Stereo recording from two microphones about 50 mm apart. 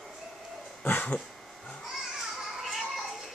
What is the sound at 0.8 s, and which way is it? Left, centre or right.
Dog, left.